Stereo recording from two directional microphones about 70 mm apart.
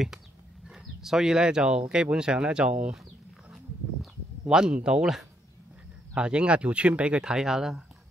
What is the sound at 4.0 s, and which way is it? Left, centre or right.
Speech, centre.